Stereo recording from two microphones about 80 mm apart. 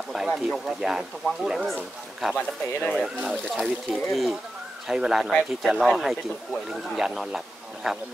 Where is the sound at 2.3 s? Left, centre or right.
Centre.